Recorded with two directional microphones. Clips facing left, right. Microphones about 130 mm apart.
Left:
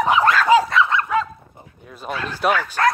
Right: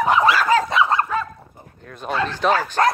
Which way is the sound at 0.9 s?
40° right (ahead or behind).